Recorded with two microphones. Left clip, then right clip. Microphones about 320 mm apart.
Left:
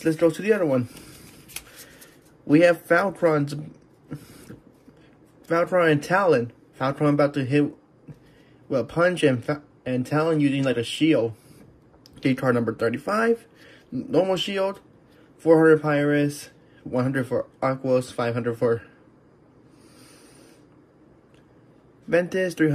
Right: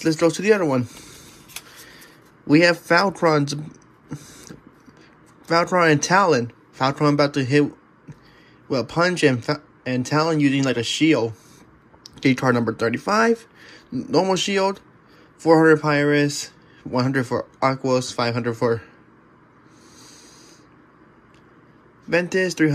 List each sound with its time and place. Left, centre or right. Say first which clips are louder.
0.0 s speech: right 2 dB; centre
2.4 s speech: right 1 dB; centre
5.5 s speech: right 3 dB; centre
8.6 s speech: right 1 dB; centre
22.1 s speech: right 2 dB; centre